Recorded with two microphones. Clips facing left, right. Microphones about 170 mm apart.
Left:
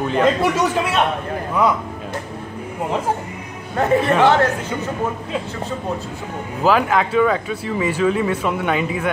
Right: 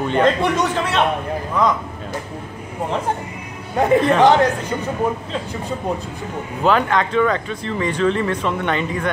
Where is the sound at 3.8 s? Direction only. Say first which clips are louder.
Right 2 dB; 15° right (ahead or behind).